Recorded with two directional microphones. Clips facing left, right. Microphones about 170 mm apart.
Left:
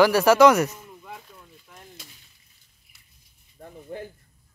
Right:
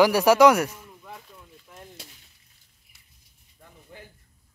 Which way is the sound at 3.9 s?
45° left (ahead or behind).